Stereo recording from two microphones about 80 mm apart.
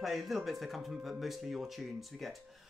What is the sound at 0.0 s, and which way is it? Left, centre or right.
Music, centre.